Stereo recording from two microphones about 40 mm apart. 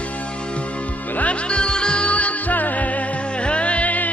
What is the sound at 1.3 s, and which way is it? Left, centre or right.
Music, left.